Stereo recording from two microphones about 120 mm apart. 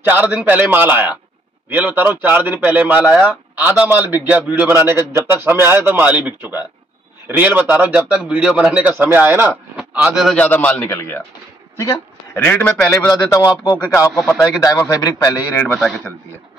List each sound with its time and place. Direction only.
0.0 s a man's voice: 15° right (ahead or behind)
9.9 s speech: 5° right (ahead or behind)
10.3 s speech: 15° left (ahead or behind)
11.7 s a sound: 25° left (ahead or behind)
12.4 s speech: 15° left (ahead or behind)
13.1 s a man's voice: 30° left (ahead or behind)
15.6 s speech: 5° left (ahead or behind)